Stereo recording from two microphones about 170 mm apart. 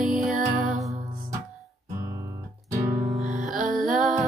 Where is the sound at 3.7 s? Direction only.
Centre (ahead or behind).